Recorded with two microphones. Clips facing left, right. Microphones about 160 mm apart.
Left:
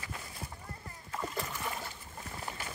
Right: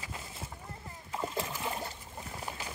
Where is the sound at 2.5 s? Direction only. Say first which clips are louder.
Even; 20° right (ahead or behind).